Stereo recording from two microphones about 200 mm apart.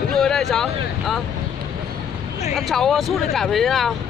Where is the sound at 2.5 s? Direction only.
Centre (ahead or behind).